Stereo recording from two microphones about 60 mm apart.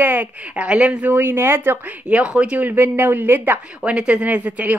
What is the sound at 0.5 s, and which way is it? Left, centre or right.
Speech, centre.